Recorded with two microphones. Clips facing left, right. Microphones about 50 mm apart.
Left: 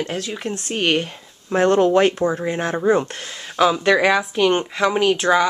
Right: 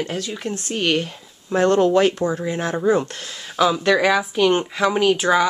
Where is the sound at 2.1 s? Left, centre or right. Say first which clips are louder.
Left 2 dB; left.